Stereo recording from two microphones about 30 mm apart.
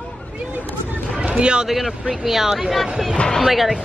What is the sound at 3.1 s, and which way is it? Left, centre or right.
Speech, left.